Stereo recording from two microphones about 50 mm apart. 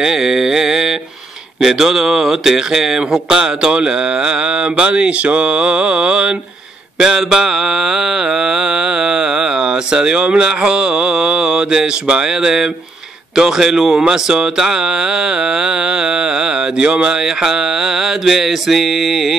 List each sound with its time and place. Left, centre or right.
0.0 s mantra: centre
1.6 s speech: centre